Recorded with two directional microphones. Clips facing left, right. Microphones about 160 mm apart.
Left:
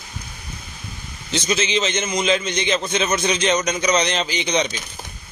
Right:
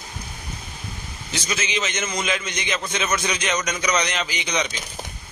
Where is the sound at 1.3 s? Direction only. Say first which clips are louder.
Left 6 dB; 25° left (ahead or behind).